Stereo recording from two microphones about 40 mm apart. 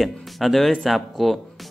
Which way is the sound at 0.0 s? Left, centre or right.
Centre.